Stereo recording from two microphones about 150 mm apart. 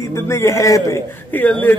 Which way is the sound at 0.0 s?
15° left (ahead or behind).